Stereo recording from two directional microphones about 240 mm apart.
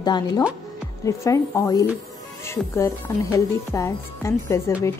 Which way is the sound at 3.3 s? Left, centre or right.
Centre.